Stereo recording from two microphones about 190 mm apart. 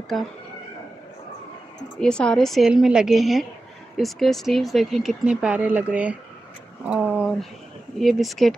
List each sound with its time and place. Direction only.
0.1 s speech: centre (ahead or behind)
2.0 s speech: 5° left (ahead or behind)